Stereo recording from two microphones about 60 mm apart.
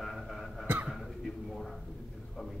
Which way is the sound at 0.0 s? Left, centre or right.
Centre.